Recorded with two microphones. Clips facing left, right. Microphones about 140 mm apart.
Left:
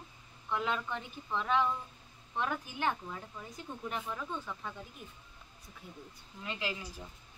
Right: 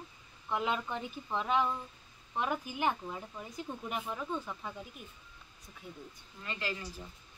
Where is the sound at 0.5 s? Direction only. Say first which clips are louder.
Right 1 dB; 15° right (ahead or behind).